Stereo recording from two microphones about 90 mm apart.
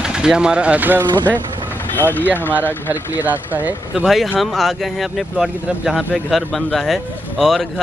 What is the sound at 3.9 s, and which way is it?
Speech, centre (ahead or behind).